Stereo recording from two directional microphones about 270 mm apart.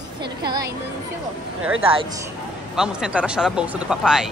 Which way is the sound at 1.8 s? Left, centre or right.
Centre.